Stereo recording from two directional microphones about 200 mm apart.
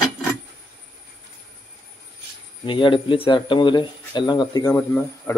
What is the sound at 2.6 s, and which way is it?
Speech, 25° left (ahead or behind).